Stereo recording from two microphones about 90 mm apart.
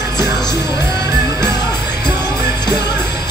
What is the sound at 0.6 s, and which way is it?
Music, 30° right (ahead or behind).